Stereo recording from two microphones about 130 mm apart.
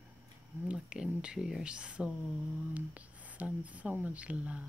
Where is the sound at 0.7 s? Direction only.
5° right (ahead or behind).